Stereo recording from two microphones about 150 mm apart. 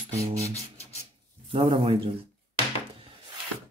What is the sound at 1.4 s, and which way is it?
Speech, 35° right (ahead or behind).